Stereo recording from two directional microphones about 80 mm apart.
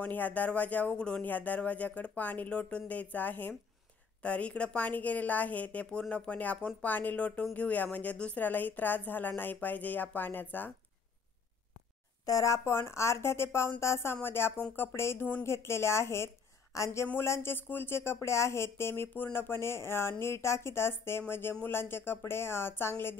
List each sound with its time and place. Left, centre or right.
0.0 s a woman's voice: centre
12.3 s speech: left
12.5 s speech: left